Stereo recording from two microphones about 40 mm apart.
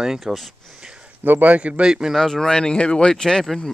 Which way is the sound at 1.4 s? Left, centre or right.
Right.